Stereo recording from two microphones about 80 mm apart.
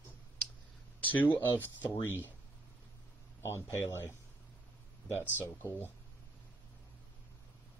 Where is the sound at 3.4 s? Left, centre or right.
Left.